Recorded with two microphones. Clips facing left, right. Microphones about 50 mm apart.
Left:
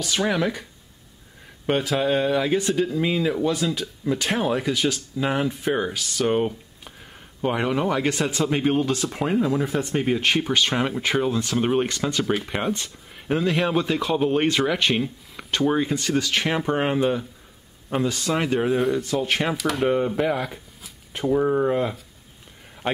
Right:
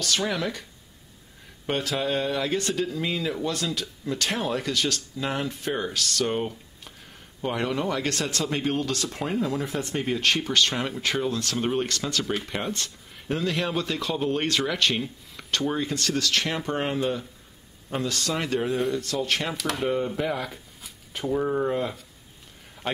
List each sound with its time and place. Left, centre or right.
0.0 s speech: centre
1.7 s speech: centre
19.5 s speech: centre